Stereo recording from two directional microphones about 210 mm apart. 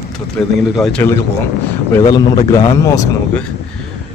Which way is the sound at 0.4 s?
5° left (ahead or behind).